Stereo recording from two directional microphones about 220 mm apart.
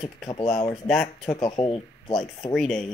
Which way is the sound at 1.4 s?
20° left (ahead or behind).